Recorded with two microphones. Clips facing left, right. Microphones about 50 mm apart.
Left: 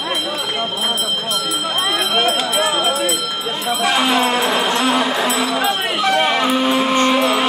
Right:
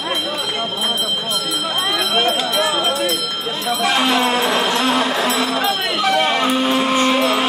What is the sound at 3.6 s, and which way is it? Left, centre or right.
Music, centre.